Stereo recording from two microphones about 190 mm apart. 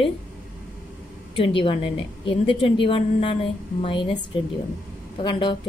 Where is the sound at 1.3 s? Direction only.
25° left (ahead or behind).